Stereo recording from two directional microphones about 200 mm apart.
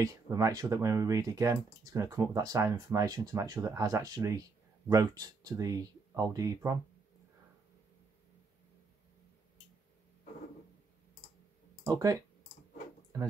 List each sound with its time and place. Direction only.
0.0 s speech: 15° right (ahead or behind)
11.8 s speech: 15° right (ahead or behind)